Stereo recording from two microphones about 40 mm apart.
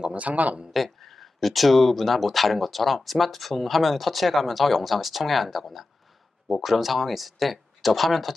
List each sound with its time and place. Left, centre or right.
0.1 s speech: right
0.7 s speech: centre